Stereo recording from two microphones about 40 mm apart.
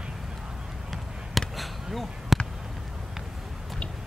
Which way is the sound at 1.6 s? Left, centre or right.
Centre.